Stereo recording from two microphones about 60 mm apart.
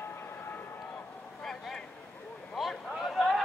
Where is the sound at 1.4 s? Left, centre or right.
Centre.